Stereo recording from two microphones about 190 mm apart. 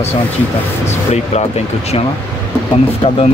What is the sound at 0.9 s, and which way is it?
Speech, 35° left (ahead or behind).